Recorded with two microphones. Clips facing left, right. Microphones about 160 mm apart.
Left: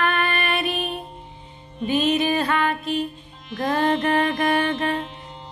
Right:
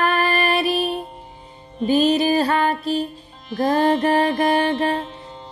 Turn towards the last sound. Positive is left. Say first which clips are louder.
# right 3 dB
turn(degrees=-35)  # may be behind; listen again after turning